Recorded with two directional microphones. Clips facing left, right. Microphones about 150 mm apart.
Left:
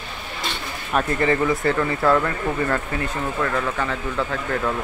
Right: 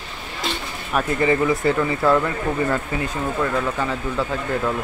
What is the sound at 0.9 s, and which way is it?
Speech, 10° right (ahead or behind).